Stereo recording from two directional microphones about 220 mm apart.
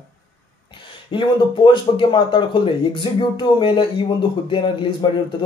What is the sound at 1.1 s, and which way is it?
Speech, 20° left (ahead or behind).